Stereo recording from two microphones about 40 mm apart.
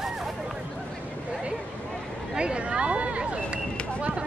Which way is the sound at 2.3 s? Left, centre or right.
Right.